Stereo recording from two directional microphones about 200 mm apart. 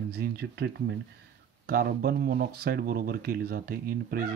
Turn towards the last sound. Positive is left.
turn(degrees=-50)  # may be behind; listen again after turning